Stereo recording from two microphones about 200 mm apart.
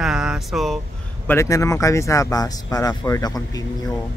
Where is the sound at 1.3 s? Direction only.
15° left (ahead or behind).